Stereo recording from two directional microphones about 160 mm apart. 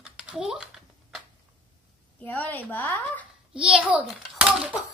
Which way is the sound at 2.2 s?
10° left (ahead or behind).